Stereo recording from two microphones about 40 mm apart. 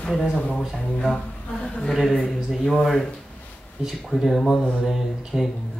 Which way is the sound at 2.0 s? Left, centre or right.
Centre.